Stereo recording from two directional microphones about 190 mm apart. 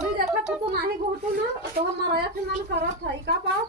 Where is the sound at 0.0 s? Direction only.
5° right (ahead or behind).